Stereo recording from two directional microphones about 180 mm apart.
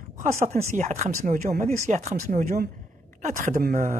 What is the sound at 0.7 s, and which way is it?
Speech, 40° right (ahead or behind).